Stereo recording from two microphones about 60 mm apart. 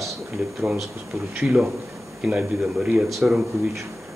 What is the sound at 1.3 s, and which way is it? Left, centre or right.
Speech, centre.